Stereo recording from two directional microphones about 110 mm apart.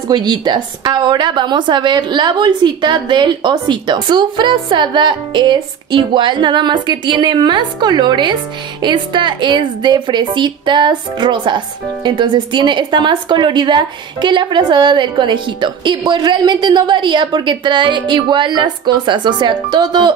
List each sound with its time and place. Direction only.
0.1 s a woman's voice: 40° right (ahead or behind)